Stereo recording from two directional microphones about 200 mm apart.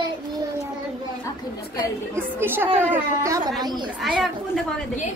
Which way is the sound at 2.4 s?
10° right (ahead or behind).